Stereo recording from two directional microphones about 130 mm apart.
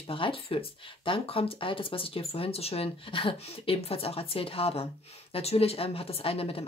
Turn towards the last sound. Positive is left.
turn(degrees=45)  # may be behind; listen again after turning